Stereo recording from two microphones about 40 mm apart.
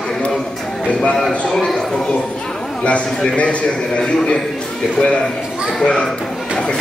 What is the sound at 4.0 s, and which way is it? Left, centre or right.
Speech, centre.